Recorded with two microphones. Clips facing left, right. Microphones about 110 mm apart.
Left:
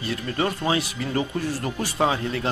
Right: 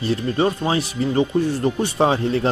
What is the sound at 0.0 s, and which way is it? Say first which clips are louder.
Speech: right 6 dB; 30° right (ahead or behind).